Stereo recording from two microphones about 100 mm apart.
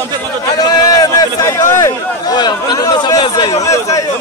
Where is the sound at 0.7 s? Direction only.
40° left (ahead or behind).